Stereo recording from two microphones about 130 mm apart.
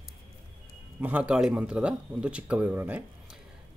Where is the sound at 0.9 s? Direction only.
10° right (ahead or behind).